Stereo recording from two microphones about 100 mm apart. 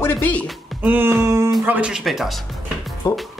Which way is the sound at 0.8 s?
20° right (ahead or behind).